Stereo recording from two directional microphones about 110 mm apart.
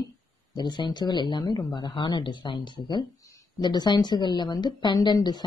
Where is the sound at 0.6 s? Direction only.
40° left (ahead or behind).